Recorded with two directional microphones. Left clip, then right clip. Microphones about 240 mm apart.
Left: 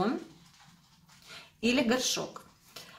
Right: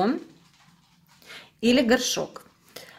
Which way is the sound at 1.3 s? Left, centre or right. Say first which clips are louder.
Right 7 dB; right.